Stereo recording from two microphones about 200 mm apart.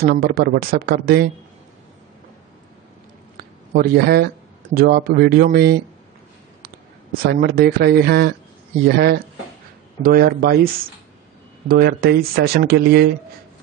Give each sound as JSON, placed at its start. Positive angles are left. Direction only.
{"t": 0.0, "sound": "speech", "side_deg": -45}
{"t": 3.7, "sound": "speech", "side_deg": -50}
{"t": 7.2, "sound": "speech", "side_deg": -50}